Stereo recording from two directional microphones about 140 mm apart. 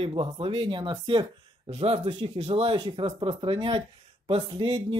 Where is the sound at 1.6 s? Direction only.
50° right (ahead or behind).